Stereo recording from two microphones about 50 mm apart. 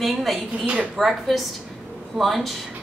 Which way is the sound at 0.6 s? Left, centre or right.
Right.